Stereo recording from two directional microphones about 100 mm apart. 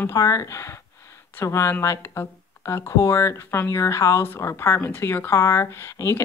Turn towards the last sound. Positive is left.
turn(degrees=25)  # may be behind; listen again after turning